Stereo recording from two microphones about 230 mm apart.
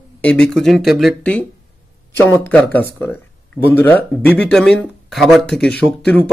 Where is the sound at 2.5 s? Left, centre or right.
Centre.